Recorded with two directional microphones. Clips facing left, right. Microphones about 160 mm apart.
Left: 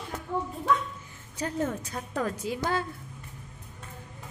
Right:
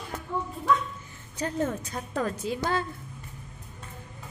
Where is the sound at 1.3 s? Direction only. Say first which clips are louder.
Right 1 dB; 10° left (ahead or behind).